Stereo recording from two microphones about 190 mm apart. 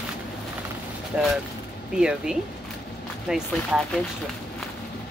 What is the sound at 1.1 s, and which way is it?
Speech, 5° right (ahead or behind).